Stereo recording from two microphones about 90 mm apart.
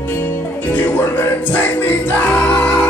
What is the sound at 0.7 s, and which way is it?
Music, 25° left (ahead or behind).